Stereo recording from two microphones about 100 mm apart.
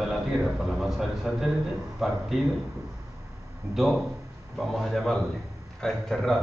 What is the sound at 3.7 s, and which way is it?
Speech, 30° right (ahead or behind).